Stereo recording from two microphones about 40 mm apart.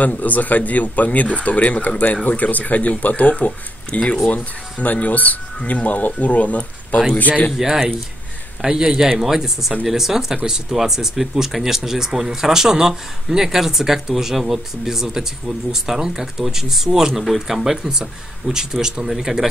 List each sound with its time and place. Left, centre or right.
0.0 s speech: left
7.5 s speech: centre